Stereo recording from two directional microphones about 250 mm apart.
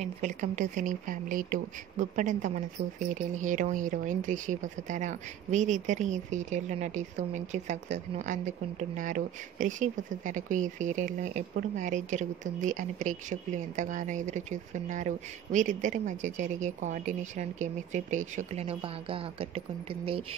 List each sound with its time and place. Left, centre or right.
0.0 s speech: right